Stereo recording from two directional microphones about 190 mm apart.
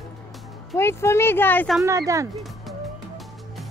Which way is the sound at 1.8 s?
15° right (ahead or behind).